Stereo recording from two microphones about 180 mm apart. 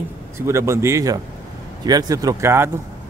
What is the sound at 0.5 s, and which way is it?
Speech, 15° right (ahead or behind).